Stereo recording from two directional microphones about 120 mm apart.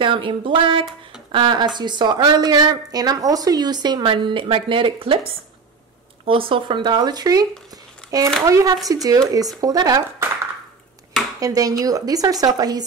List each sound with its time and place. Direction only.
0.0 s a woman's voice: 45° right (ahead or behind)
6.2 s a woman's voice: 50° right (ahead or behind)
7.7 s a sound: 30° right (ahead or behind)
8.5 s a woman's voice: 30° right (ahead or behind)
11.3 s a woman's voice: 30° right (ahead or behind)